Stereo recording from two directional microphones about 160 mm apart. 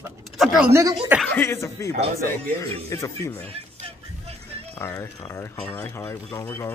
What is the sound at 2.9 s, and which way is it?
Speech, 15° left (ahead or behind).